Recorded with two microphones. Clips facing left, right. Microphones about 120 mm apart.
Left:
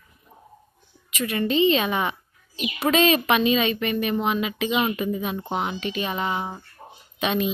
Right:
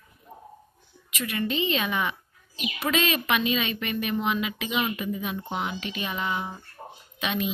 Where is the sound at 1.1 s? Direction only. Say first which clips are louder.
Left 5 dB; 30° left (ahead or behind).